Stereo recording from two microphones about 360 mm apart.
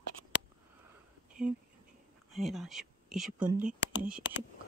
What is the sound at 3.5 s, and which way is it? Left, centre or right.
Speech, right.